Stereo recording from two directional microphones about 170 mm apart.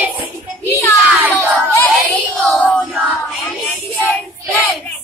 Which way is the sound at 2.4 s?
5° left (ahead or behind).